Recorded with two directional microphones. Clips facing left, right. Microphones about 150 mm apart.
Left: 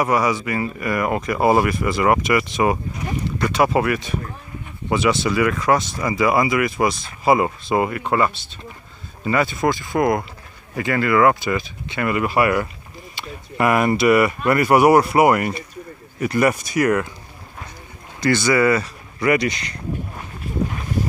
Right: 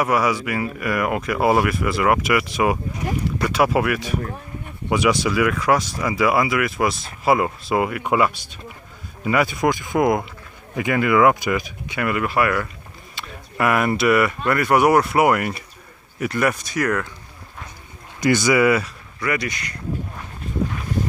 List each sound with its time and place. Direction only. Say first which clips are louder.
0.0 s speech: left 1 dB; 5° right (ahead or behind)
12.1 s speech: left 2 dB; 5° left (ahead or behind)
18.2 s speech: even; 15° right (ahead or behind)
19.2 s speech: left 6 dB; 25° left (ahead or behind)